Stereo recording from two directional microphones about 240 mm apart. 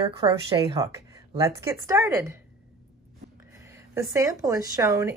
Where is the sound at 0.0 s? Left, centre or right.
Right.